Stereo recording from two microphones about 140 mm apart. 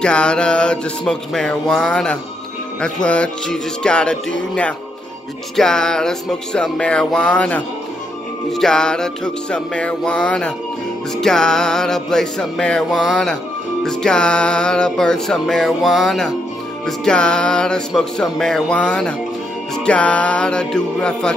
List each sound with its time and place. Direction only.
0.0 s music: 5° left (ahead or behind)